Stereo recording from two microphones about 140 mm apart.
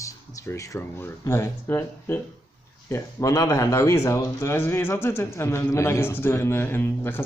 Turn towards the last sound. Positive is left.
turn(degrees=15)  # may be behind; listen again after turning